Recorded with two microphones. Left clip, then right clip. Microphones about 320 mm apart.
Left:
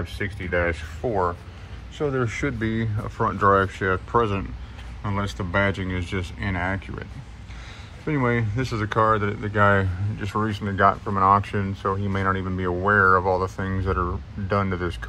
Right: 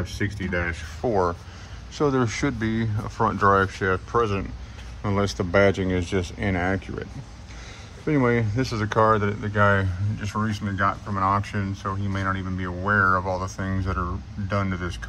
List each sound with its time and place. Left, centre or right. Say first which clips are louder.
0.0 s speech: right 1 dB; centre
1.0 s speech: right 1 dB; right; by 15.0 s centre